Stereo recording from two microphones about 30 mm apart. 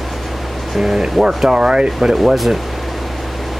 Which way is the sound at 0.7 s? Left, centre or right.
Centre.